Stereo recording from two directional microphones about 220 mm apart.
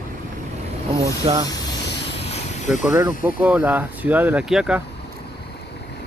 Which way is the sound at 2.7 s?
Centre (ahead or behind).